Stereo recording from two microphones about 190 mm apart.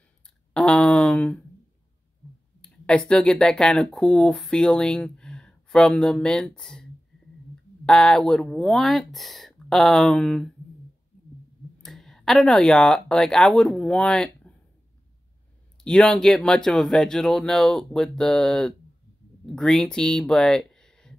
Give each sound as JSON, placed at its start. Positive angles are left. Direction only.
{"t": 0.5, "sound": "a sound", "side_deg": 5}
{"t": 2.6, "sound": "speech", "side_deg": 5}
{"t": 11.8, "sound": "speech", "side_deg": 0}
{"t": 15.8, "sound": "speech", "side_deg": 5}